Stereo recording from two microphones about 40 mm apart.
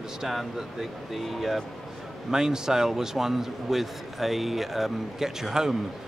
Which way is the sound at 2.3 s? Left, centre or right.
Centre.